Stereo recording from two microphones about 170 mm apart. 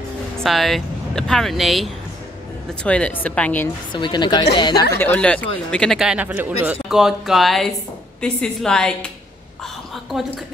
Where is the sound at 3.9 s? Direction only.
25° left (ahead or behind).